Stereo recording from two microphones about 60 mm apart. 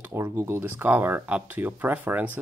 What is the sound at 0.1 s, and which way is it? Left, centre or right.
Speech, right.